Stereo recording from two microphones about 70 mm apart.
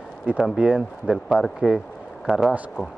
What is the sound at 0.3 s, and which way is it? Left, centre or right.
A man's voice, centre.